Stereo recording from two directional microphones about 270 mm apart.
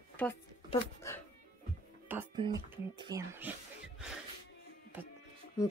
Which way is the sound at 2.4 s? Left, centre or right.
Centre.